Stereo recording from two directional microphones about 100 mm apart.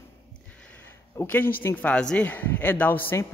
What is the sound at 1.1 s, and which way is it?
Speech, 20° left (ahead or behind).